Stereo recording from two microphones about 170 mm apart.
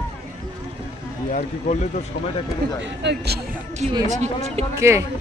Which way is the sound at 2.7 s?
90° right.